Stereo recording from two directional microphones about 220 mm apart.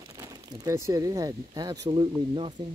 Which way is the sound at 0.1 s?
15° right (ahead or behind).